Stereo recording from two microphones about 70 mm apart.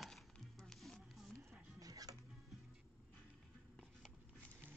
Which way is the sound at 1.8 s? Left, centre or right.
Right.